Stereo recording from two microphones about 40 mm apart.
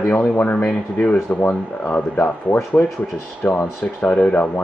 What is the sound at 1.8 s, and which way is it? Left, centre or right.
Speech, left.